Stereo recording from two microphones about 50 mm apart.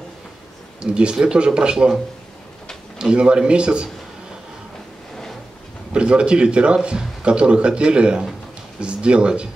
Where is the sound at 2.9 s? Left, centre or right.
Right.